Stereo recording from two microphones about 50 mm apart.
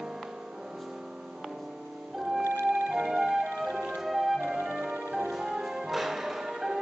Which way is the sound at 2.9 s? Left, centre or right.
Centre.